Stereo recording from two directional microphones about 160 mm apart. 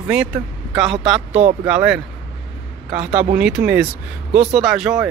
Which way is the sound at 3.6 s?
45° right (ahead or behind).